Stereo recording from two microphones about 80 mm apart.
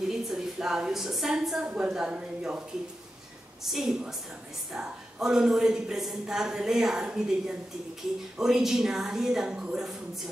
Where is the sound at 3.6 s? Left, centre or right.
Centre.